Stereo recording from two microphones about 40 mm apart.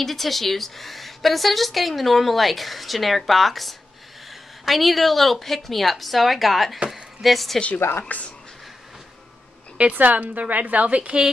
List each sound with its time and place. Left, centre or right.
0.0 s a woman's voice: centre
6.9 s a sound: centre
8.1 s speech: left
9.9 s a woman's voice: right